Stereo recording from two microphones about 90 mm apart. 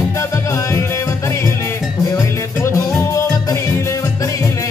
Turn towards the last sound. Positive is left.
turn(degrees=35)  # may be behind; listen again after turning